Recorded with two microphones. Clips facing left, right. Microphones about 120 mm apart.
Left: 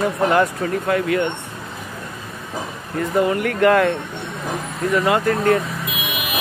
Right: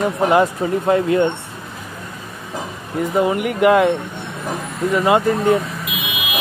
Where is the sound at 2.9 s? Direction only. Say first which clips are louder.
Right 1 dB; 20° right (ahead or behind).